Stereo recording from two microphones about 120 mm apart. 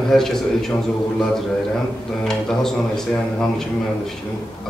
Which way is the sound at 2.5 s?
5° left (ahead or behind).